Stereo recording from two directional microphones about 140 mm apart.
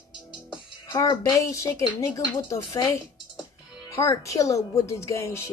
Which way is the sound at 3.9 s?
20° left (ahead or behind).